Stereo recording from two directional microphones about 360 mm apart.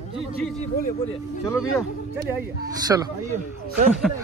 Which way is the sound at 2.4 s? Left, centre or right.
Centre.